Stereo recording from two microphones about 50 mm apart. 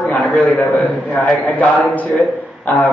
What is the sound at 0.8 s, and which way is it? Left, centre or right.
A man's voice, left.